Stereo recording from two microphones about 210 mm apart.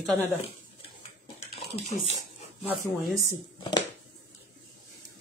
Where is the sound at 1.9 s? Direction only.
30° left (ahead or behind).